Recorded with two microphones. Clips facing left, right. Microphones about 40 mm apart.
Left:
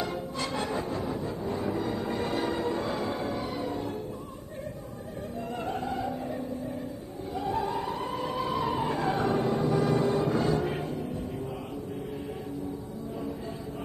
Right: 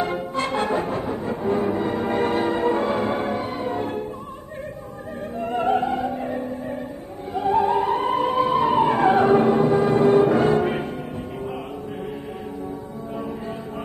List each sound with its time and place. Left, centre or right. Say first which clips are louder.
0.0 s music: right 8 dB; right
5.4 s music: right 13 dB; right